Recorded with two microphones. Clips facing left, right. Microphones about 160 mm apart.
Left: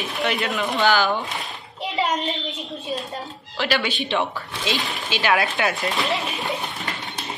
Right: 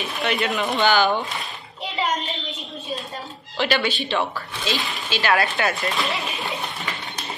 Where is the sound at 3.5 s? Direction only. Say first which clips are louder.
Right 1 dB; 5° left (ahead or behind).